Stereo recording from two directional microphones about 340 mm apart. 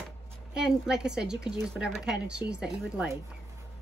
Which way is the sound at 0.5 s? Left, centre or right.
Centre.